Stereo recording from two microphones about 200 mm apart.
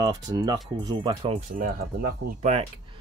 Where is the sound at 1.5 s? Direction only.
50° right (ahead or behind).